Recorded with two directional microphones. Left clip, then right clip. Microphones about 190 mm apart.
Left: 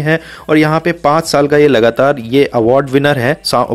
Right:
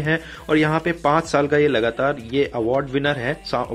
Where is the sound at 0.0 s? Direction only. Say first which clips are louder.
Left 8 dB; 40° left (ahead or behind).